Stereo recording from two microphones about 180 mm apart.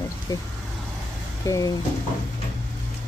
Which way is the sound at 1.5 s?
20° left (ahead or behind).